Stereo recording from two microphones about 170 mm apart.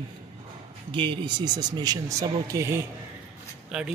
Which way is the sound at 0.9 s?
30° right (ahead or behind).